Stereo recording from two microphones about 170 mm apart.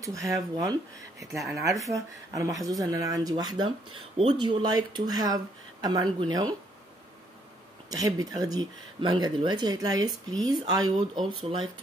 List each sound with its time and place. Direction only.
0.0 s speech: 20° right (ahead or behind)
7.9 s speech: 20° right (ahead or behind)